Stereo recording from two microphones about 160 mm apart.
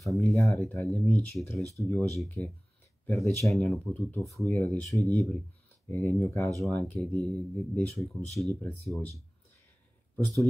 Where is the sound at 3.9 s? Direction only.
10° left (ahead or behind).